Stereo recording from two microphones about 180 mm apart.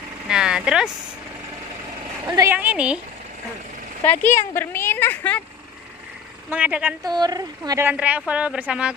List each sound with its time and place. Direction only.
0.3 s speech: 5° right (ahead or behind)
2.2 s speech: 15° right (ahead or behind)
4.0 s speech: 10° left (ahead or behind)
6.5 s speech: 10° right (ahead or behind)
7.1 s a woman's voice: 20° right (ahead or behind)
7.9 s speech: 5° right (ahead or behind)